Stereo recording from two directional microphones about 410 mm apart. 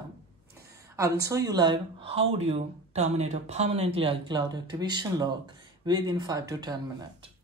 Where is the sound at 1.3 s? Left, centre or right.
Centre.